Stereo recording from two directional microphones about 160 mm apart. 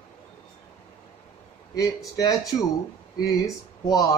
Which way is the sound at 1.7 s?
20° left (ahead or behind).